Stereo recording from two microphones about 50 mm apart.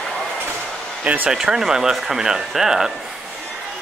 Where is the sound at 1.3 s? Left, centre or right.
Centre.